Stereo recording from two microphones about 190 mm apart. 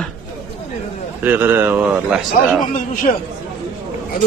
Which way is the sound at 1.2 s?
10° right (ahead or behind).